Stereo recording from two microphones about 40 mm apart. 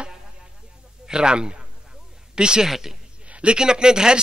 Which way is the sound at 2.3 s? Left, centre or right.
Centre.